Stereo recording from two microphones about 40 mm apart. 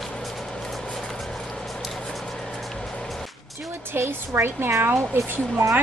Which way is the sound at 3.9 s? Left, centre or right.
Right.